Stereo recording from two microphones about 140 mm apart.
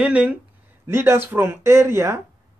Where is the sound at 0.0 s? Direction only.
10° right (ahead or behind).